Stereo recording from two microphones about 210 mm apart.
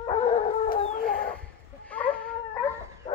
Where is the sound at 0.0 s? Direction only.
30° left (ahead or behind).